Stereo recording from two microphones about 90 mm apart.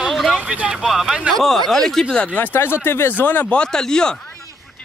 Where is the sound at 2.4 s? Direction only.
25° left (ahead or behind).